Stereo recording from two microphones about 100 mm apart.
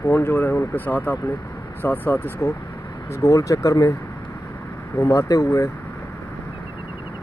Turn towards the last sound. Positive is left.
turn(degrees=35)  # may be behind; listen again after turning